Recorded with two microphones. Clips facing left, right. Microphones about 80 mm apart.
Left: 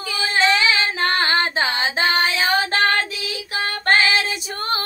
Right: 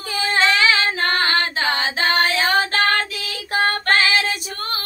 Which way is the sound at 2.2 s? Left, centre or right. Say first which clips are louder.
Right 1 dB; right.